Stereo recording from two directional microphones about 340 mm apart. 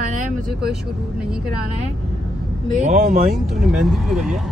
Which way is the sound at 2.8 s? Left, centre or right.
Right.